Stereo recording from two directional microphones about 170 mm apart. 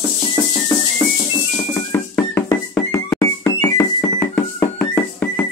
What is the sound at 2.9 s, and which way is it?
Music, 15° left (ahead or behind).